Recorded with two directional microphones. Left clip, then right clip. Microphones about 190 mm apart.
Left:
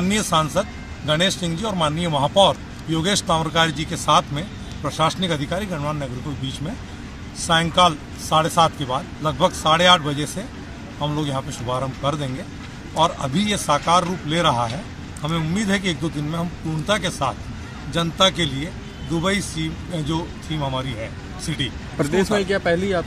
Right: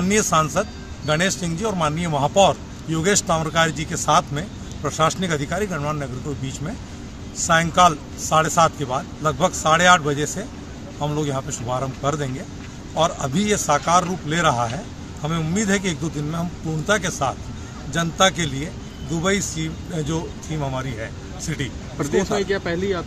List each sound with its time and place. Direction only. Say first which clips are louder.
0.0 s a man's voice: right 1 dB; centre (ahead or behind)
7.3 s a man's voice: right 1 dB; centre (ahead or behind)
21.9 s speech: left 1 dB; 70° left (ahead or behind)